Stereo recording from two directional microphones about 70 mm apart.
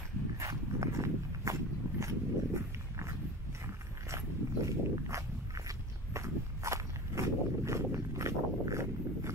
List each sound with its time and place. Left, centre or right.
0.4 s walk: right
4.6 s walk: right